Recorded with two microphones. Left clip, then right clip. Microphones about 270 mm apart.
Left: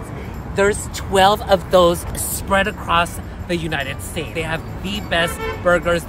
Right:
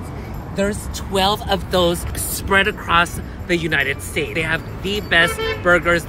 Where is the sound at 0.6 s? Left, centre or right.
Left.